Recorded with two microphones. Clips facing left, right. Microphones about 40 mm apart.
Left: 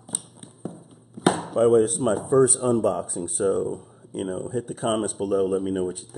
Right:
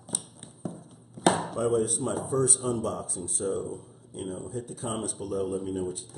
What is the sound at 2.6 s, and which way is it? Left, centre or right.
Speech, left.